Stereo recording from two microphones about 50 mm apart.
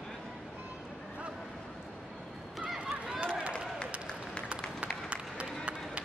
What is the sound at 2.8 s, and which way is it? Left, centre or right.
Run, right.